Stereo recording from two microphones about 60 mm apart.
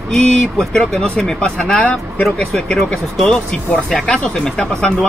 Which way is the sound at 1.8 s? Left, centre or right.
Left.